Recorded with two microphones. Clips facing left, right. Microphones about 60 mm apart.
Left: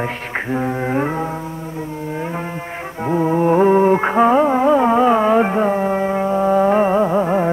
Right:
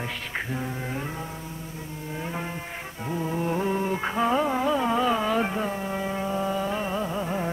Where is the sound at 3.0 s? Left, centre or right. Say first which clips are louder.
Left 12 dB; left.